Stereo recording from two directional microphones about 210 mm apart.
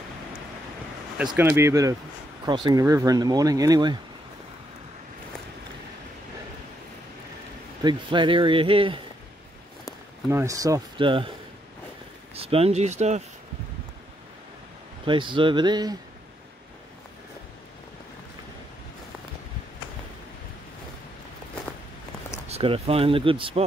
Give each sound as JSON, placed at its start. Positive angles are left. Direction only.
{"t": 1.1, "sound": "speech", "side_deg": -5}
{"t": 7.8, "sound": "speech", "side_deg": -20}
{"t": 10.3, "sound": "speech", "side_deg": -15}
{"t": 12.4, "sound": "speech", "side_deg": -30}
{"t": 15.0, "sound": "speech", "side_deg": -25}
{"t": 22.5, "sound": "speech", "side_deg": -25}